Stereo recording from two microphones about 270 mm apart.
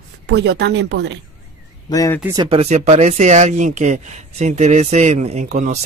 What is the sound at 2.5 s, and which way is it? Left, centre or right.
Speech, right.